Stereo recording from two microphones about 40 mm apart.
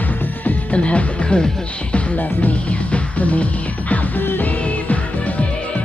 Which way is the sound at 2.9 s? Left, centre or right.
Left.